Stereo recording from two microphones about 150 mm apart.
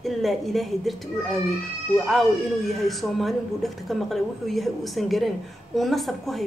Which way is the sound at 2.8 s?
Centre (ahead or behind).